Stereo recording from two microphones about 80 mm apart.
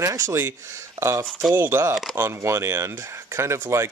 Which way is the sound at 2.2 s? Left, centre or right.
Right.